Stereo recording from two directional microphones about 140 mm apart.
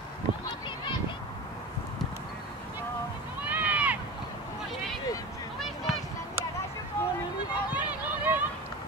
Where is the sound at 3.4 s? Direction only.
10° right (ahead or behind).